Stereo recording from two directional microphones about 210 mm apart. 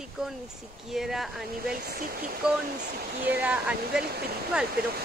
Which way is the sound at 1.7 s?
45° right (ahead or behind).